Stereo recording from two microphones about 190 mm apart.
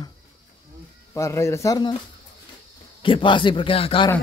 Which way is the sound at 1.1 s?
15° left (ahead or behind).